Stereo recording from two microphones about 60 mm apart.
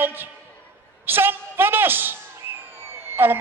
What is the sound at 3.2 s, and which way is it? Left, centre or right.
Speech, right.